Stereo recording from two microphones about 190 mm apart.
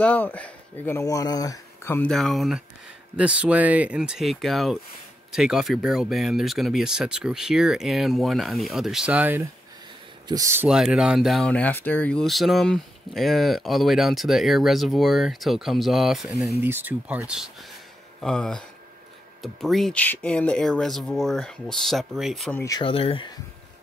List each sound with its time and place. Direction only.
0.0 s speech: 10° left (ahead or behind); by 10.7 s 15° right (ahead or behind)
10.7 s speech: 5° right (ahead or behind)
16.5 s speech: 10° right (ahead or behind)
18.2 s speech: 5° left (ahead or behind)
22.6 s speech: 20° left (ahead or behind)